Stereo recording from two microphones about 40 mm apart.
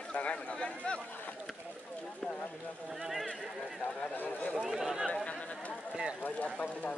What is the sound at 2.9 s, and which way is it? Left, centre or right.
Speech, centre.